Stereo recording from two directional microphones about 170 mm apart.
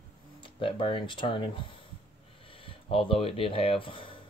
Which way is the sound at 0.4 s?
30° left (ahead or behind).